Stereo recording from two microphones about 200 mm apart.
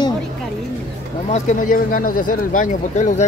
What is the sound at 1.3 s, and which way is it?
Speech, 40° left (ahead or behind).